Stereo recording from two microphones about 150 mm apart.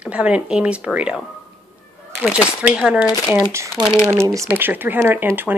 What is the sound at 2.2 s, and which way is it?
Speech, 5° right (ahead or behind).